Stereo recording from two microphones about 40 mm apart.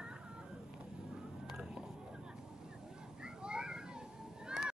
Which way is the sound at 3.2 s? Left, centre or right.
Right.